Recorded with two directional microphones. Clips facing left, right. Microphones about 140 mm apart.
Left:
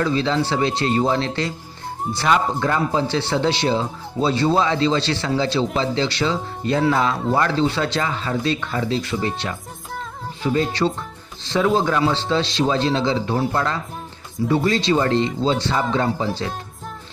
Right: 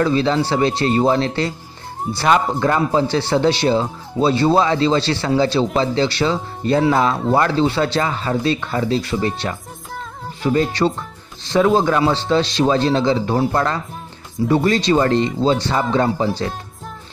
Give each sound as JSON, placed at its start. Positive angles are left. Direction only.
{"t": 0.0, "sound": "a man's voice", "side_deg": -40}